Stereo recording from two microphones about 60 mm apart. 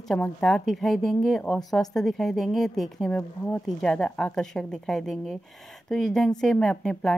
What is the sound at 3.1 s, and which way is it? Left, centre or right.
Speech, left.